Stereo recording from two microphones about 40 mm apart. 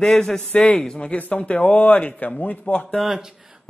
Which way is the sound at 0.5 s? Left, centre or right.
Left.